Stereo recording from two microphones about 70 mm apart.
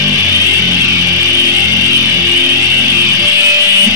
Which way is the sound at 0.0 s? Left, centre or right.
Right.